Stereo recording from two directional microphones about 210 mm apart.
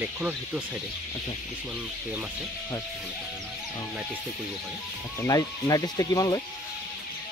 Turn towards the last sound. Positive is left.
turn(degrees=15)  # may be behind; listen again after turning